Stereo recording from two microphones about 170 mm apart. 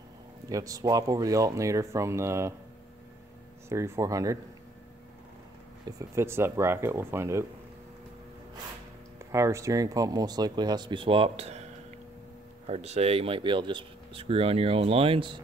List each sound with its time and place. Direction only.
0.5 s speech: 20° right (ahead or behind)
3.6 s speech: 15° right (ahead or behind)
5.9 s speech: 15° right (ahead or behind)
9.3 s speech: 15° right (ahead or behind); by 11.6 s 35° right (ahead or behind)
12.6 s speech: 40° right (ahead or behind)